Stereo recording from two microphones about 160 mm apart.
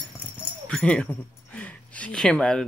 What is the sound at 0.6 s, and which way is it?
Speech, 5° left (ahead or behind).